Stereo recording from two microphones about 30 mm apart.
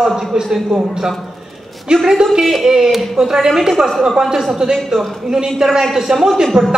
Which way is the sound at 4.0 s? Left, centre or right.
Right.